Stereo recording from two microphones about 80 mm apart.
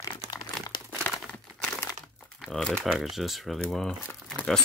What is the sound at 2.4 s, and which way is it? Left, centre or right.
Crumpling, centre.